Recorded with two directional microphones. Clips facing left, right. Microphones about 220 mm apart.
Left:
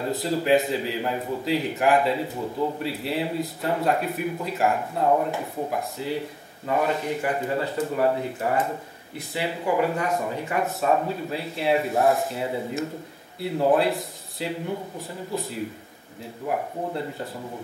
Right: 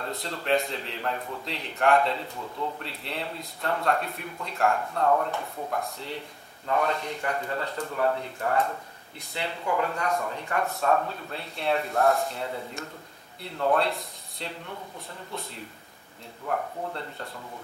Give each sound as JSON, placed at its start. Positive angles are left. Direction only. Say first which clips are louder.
{"t": 0.0, "sound": "a man's voice", "louder": "left 8 dB", "side_deg": 5}
{"t": 4.5, "sound": "speech", "louder": "left 1 dB", "side_deg": 5}
{"t": 4.7, "sound": "a man's voice", "louder": "left 2 dB", "side_deg": 15}